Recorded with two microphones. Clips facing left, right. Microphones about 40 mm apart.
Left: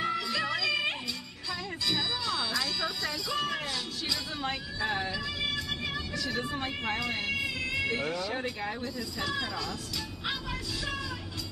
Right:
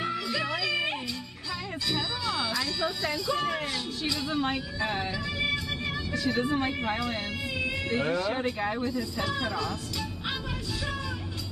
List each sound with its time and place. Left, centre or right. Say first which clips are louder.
0.0 s music: even; centre
4.1 s vehicle: right 5 dB; centre
6.1 s speech: right 8 dB; centre
6.7 s speech: right 2 dB; centre
8.0 s speech: right 5 dB; right
8.8 s speech: right 4 dB; centre